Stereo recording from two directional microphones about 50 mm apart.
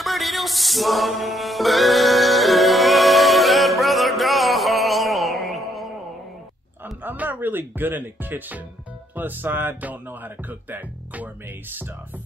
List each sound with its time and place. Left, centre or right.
0.0 s music: centre
6.8 s music: right
9.1 s speech: right